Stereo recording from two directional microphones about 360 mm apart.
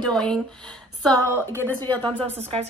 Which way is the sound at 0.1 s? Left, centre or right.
Centre.